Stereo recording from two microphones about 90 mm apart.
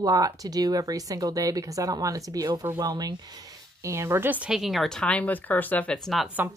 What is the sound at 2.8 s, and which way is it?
Speech, 45° right (ahead or behind).